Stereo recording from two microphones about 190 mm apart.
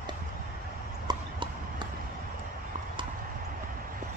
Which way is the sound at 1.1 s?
20° right (ahead or behind).